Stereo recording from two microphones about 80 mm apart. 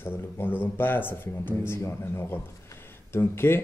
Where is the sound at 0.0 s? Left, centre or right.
Left.